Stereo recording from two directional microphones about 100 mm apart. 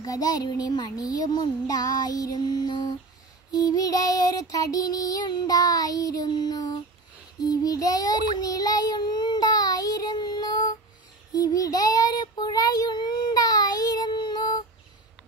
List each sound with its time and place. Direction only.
0.0 s music: 35° left (ahead or behind)
8.4 s child singing: 40° left (ahead or behind)